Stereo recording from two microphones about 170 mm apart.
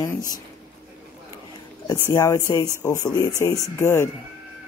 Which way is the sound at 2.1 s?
20° left (ahead or behind).